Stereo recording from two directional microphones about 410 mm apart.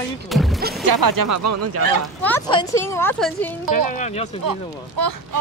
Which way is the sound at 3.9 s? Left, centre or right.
Centre.